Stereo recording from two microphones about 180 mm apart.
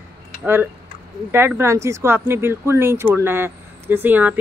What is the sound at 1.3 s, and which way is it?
Speech, 10° right (ahead or behind).